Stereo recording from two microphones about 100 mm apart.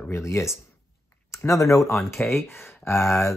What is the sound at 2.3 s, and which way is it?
Speech, 30° left (ahead or behind).